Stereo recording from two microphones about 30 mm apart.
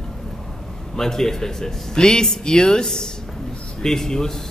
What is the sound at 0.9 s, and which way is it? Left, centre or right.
A man's voice, centre.